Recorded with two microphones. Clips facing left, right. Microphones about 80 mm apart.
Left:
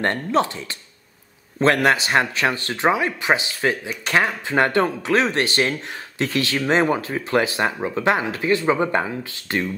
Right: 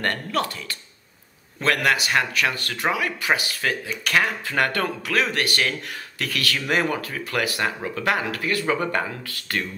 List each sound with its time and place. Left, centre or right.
0.0 s speech: left
1.6 s speech: left